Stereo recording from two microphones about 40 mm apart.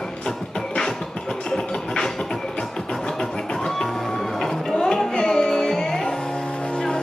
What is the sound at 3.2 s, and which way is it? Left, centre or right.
Music, centre.